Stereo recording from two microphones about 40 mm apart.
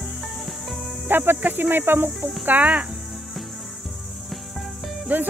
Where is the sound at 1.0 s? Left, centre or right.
Right.